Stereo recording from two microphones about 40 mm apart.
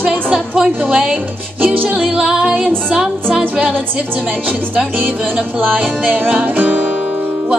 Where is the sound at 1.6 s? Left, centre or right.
Right.